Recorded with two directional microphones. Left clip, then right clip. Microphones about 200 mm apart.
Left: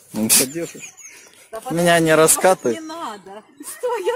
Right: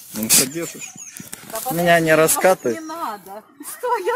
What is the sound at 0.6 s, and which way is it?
Speech, 20° right (ahead or behind).